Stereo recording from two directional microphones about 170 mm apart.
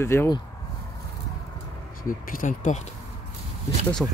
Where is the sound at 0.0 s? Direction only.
15° left (ahead or behind).